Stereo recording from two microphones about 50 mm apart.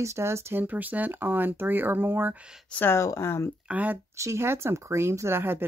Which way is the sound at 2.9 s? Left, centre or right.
Left.